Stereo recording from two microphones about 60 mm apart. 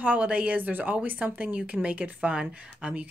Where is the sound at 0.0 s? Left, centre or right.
Right.